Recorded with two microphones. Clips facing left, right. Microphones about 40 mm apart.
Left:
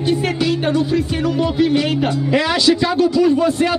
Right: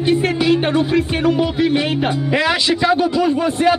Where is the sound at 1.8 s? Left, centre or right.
Right.